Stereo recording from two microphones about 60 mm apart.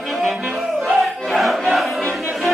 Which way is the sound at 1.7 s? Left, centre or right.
Centre.